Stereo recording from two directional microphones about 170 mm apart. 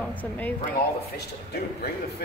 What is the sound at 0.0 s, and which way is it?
Speech, 10° left (ahead or behind).